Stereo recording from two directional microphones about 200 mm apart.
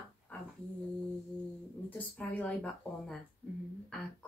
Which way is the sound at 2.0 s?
5° left (ahead or behind).